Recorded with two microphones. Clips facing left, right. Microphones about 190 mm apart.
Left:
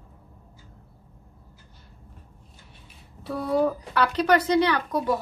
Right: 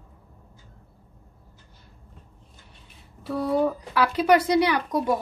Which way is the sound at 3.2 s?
Centre (ahead or behind).